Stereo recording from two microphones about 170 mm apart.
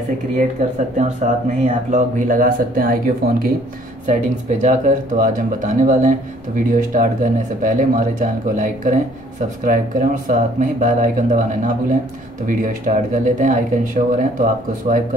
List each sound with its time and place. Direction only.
0.4 s speech: 45° right (ahead or behind)
4.0 s speech: 45° right (ahead or behind)